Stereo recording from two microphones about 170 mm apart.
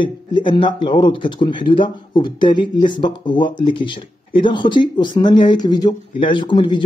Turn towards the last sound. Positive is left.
turn(degrees=25)  # may be behind; listen again after turning